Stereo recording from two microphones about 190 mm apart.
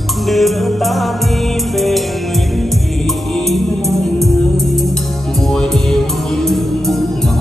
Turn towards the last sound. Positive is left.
turn(degrees=0)  # may be behind; listen again after turning